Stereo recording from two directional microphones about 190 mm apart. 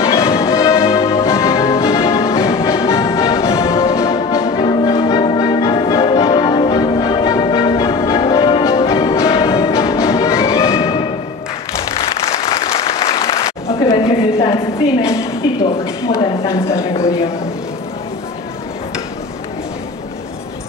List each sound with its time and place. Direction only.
0.0 s music: 15° left (ahead or behind)
12.0 s applause: 30° left (ahead or behind)